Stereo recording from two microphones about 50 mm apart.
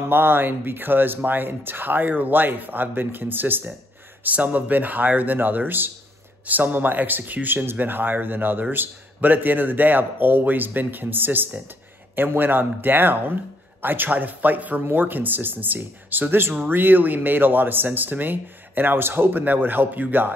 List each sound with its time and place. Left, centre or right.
0.0 s speech: right
4.2 s speech: right